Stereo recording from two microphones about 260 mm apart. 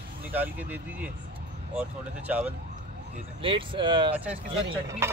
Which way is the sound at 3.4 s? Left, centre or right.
Centre.